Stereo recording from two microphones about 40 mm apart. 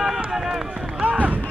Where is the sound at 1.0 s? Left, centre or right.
Right.